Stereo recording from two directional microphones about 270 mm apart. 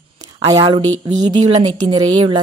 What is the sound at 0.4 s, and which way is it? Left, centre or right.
A woman's voice, centre.